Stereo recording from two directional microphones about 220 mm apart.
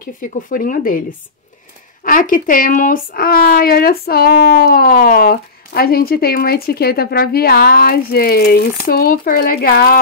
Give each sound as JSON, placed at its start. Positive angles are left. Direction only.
{"t": 0.2, "sound": "speech", "side_deg": 40}
{"t": 2.0, "sound": "speech", "side_deg": 40}